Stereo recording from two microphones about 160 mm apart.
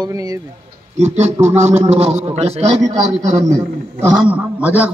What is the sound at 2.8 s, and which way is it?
Speech, 20° right (ahead or behind).